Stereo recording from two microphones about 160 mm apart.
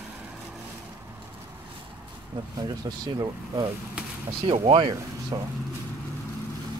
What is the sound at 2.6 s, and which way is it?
Speech, 25° right (ahead or behind).